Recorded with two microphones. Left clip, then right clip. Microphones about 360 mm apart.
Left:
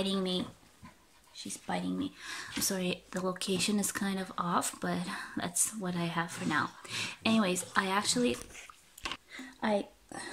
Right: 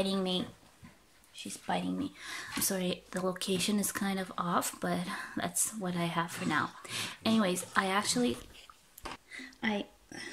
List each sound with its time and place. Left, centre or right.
0.0 s speech: centre
9.7 s speech: left